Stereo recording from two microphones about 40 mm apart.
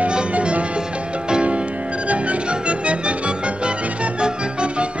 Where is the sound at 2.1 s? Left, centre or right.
Right.